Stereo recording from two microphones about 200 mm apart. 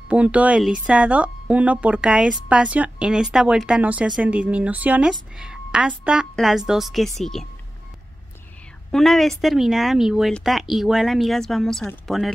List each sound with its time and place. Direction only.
0.1 s speech: 5° right (ahead or behind)
8.9 s speech: centre (ahead or behind)